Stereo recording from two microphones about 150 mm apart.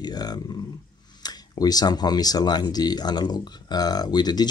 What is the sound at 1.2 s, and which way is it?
Speech, 25° left (ahead or behind).